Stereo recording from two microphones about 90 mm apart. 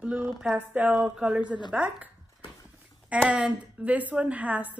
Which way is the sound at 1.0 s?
5° right (ahead or behind).